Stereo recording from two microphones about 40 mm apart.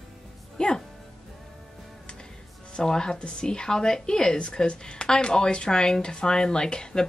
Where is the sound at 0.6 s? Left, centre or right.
Left.